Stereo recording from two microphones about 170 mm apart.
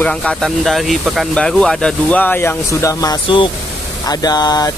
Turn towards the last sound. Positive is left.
turn(degrees=20)  # may be behind; listen again after turning